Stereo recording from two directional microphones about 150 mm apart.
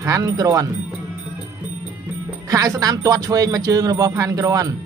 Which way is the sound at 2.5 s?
20° right (ahead or behind).